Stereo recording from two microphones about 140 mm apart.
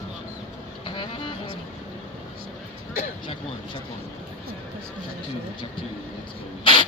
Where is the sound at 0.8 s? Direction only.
35° left (ahead or behind).